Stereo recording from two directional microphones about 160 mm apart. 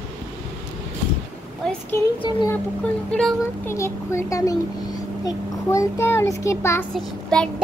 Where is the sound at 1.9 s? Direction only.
15° left (ahead or behind).